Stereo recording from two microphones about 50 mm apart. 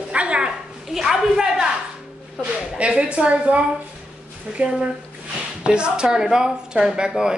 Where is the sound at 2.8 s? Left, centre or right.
Right.